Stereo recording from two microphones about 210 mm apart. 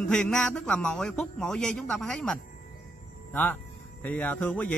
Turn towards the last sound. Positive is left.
turn(degrees=5)  # may be behind; listen again after turning